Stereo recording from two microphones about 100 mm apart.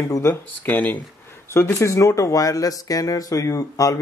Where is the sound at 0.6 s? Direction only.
15° left (ahead or behind).